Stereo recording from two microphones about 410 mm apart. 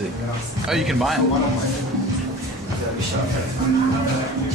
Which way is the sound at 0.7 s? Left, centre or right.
Centre.